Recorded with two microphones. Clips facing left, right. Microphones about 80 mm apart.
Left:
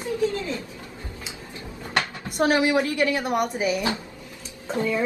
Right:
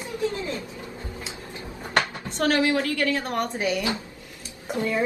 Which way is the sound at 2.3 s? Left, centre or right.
Centre.